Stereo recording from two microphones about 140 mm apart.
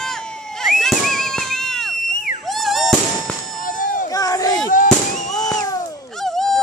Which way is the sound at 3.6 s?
70° left (ahead or behind).